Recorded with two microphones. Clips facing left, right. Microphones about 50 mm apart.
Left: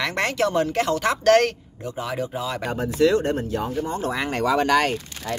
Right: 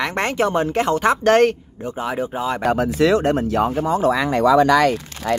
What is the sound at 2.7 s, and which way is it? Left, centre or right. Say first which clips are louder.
Speech: right 3 dB; right.